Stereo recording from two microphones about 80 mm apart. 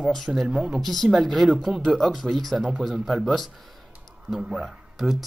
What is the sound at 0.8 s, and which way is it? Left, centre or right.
Speech, centre.